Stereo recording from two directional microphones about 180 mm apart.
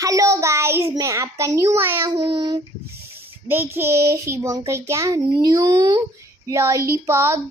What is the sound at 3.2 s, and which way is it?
A child's voice, 10° right (ahead or behind).